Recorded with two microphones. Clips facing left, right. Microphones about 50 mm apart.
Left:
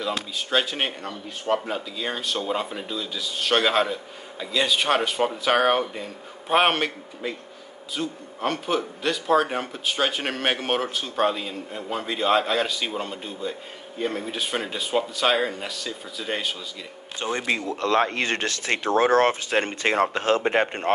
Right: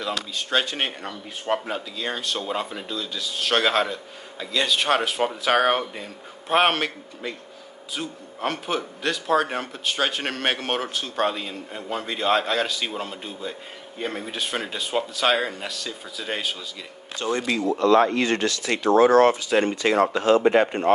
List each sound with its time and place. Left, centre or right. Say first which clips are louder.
0.5 s speech: even; centre
1.0 s speech: left 1 dB; centre
1.7 s speech: even; centre
14.3 s speech: even; centre
17.2 s speech: right 1 dB; left
17.7 s speech: right 5 dB; left